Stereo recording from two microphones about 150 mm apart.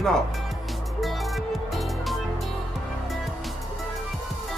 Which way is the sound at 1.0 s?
Centre (ahead or behind).